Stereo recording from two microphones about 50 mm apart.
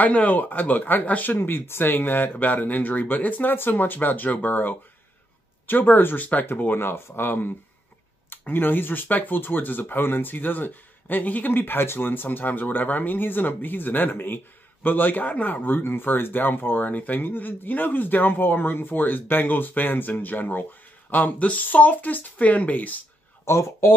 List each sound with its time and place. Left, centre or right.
0.0 s speech: left
23.4 s speech: left